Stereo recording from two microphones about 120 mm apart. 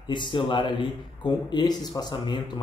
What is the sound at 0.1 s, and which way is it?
A man's voice, 40° left (ahead or behind).